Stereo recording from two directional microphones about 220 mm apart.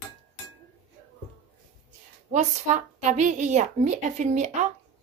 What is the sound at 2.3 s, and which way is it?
A woman's voice, 35° right (ahead or behind).